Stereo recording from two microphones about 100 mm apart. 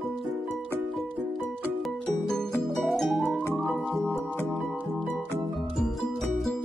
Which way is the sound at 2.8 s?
Centre (ahead or behind).